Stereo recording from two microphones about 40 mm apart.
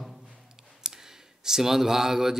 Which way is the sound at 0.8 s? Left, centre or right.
Centre.